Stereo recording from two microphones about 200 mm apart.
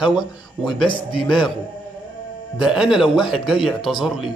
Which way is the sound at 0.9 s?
25° left (ahead or behind).